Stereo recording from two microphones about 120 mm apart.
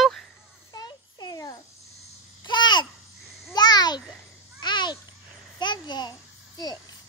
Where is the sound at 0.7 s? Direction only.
35° left (ahead or behind).